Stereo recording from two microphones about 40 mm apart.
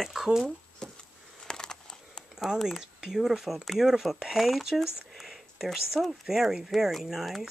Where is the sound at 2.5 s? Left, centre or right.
Centre.